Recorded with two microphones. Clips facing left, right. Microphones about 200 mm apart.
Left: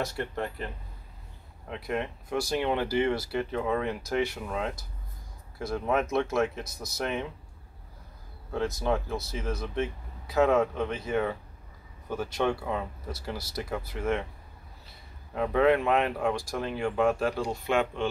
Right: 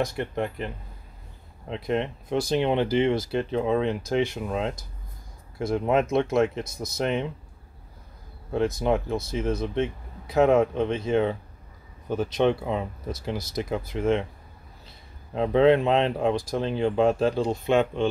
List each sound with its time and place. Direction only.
0.0 s speech: 15° right (ahead or behind)
1.9 s speech: 20° right (ahead or behind)
8.5 s speech: 20° right (ahead or behind)
15.3 s speech: 25° right (ahead or behind)